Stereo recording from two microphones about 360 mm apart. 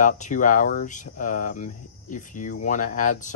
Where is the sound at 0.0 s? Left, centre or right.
Left.